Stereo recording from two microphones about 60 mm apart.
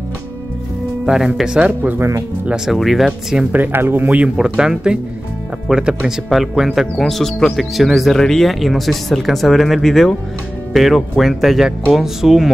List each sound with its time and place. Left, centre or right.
1.0 s speech: centre
1.8 s speech: right
2.5 s speech: centre
3.5 s speech: right
4.4 s speech: centre